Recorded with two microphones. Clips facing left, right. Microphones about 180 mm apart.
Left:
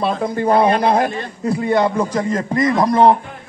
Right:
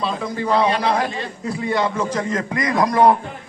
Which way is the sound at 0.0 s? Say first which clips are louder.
Left 5 dB; 55° left (ahead or behind).